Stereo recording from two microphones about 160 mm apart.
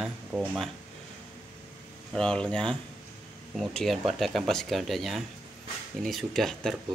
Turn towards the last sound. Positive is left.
turn(degrees=0)  # may be behind; listen again after turning